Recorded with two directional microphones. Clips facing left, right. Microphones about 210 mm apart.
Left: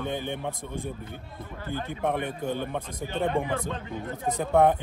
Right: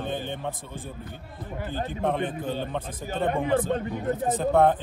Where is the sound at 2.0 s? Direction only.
15° left (ahead or behind).